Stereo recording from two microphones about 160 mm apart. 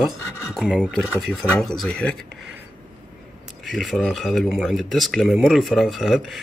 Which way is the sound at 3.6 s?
Centre (ahead or behind).